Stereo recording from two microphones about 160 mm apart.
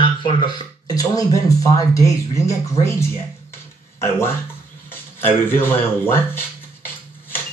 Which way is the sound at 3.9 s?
15° left (ahead or behind).